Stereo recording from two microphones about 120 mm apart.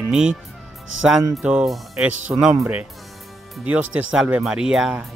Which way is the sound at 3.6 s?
10° right (ahead or behind).